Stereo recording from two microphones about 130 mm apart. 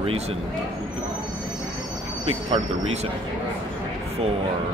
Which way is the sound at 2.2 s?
50° right (ahead or behind).